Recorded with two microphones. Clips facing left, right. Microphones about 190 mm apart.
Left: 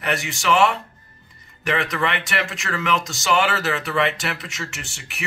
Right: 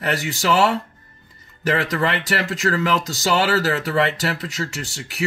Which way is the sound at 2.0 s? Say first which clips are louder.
Right 2 dB; 35° right (ahead or behind).